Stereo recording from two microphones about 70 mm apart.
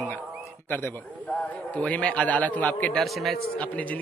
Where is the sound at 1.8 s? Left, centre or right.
Centre.